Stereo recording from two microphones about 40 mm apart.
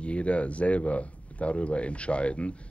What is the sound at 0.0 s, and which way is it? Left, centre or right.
Speech, left.